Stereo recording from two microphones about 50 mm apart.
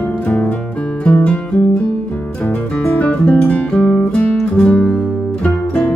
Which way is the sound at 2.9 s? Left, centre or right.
Left.